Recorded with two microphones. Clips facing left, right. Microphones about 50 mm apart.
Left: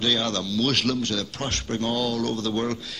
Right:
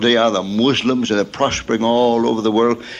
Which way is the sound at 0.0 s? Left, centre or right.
Right.